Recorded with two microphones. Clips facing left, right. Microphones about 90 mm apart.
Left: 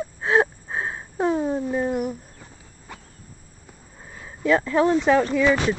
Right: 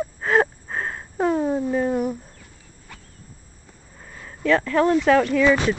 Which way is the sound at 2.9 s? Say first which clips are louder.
Left 3 dB; 20° left (ahead or behind).